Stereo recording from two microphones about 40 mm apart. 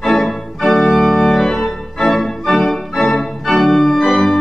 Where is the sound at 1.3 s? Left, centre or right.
Centre.